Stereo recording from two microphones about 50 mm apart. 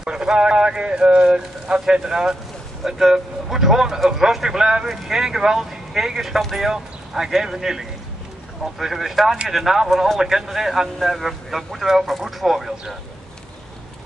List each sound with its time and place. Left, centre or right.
0.0 s speech: centre